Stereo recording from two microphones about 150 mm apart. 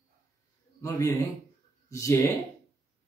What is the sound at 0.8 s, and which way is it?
Speech, 20° left (ahead or behind).